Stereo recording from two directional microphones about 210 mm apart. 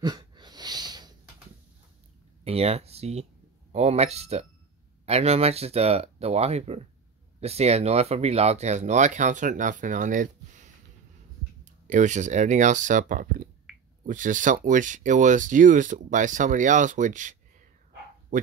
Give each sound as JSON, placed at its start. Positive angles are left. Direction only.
{"t": 0.0, "sound": "a sound", "side_deg": -20}
{"t": 2.4, "sound": "speech", "side_deg": -30}
{"t": 18.3, "sound": "dog", "side_deg": -35}